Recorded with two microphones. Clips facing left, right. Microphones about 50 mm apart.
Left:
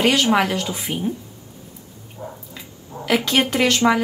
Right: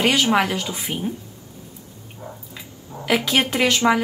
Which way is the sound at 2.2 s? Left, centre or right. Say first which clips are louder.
Left 3 dB; centre.